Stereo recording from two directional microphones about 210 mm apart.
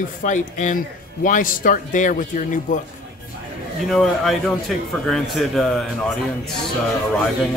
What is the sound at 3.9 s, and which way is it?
A man's voice, centre (ahead or behind).